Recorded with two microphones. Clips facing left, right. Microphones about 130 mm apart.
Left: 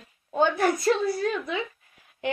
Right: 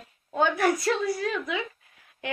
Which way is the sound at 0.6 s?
25° left (ahead or behind).